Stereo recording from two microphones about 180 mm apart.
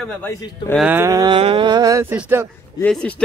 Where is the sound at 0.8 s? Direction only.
10° right (ahead or behind).